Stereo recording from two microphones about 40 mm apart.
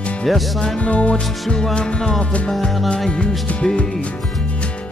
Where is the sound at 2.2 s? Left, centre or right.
Left.